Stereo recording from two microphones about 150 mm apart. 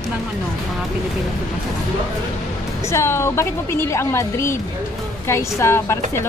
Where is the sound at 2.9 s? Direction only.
15° left (ahead or behind).